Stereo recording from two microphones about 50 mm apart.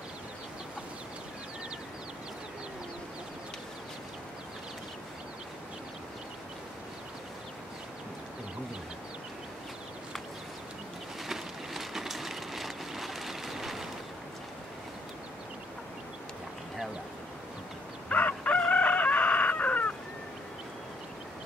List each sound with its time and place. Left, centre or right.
11.2 s vehicle: centre
18.0 s chicken: left